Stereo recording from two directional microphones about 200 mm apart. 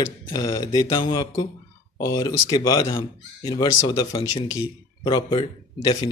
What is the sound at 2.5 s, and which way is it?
Speech, 20° left (ahead or behind).